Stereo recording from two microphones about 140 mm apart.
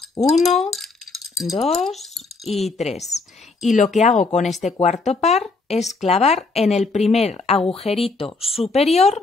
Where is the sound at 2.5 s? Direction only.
Centre (ahead or behind).